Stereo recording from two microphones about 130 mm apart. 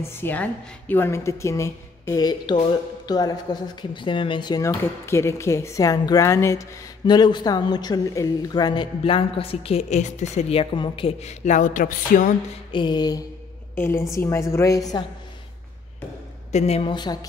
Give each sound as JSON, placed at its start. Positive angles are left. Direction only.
{"t": 0.0, "sound": "a woman's voice", "side_deg": 20}
{"t": 5.0, "sound": "a woman's voice", "side_deg": 20}
{"t": 7.1, "sound": "a woman's voice", "side_deg": 35}
{"t": 12.7, "sound": "music", "side_deg": 35}
{"t": 13.7, "sound": "a woman's voice", "side_deg": 20}
{"t": 16.5, "sound": "a woman's voice", "side_deg": 50}
{"t": 16.9, "sound": "music", "side_deg": 30}